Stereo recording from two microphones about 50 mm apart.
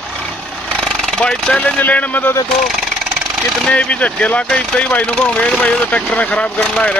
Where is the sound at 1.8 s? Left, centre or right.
Left.